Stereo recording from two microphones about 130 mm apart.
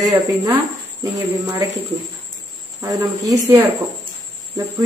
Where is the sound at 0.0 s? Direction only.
25° right (ahead or behind).